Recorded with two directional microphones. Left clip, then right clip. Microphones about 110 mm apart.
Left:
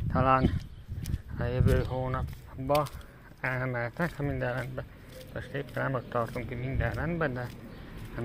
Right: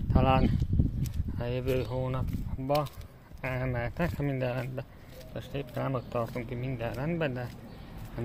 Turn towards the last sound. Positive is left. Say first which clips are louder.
# left 1 dB
turn(degrees=-20)  # may be behind; listen again after turning